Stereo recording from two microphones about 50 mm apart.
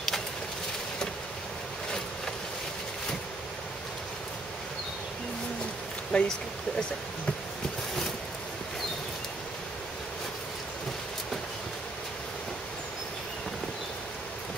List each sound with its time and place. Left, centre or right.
6.1 s speech: centre